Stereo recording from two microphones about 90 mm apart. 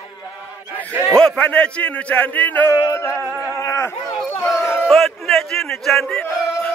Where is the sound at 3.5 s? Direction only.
30° left (ahead or behind).